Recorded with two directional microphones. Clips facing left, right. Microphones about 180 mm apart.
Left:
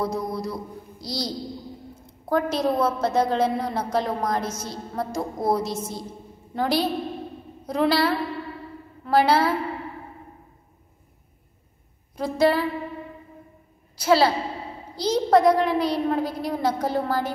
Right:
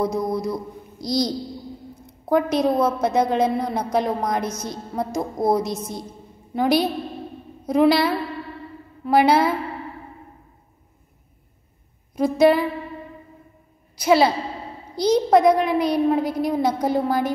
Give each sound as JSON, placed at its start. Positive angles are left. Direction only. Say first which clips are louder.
{"t": 0.0, "sound": "a woman's voice", "louder": "right 4 dB", "side_deg": -15}
{"t": 12.2, "sound": "a woman's voice", "louder": "right 5 dB", "side_deg": -15}
{"t": 13.9, "sound": "a woman's voice", "louder": "right 2 dB", "side_deg": -15}